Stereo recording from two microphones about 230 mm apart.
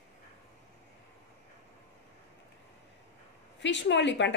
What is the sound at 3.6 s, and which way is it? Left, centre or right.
Speech, left.